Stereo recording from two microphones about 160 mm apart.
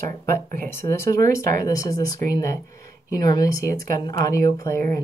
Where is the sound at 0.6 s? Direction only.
15° left (ahead or behind).